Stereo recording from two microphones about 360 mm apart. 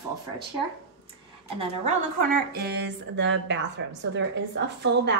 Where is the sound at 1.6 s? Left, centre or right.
Right.